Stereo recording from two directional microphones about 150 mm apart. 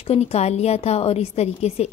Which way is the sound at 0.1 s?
45° left (ahead or behind).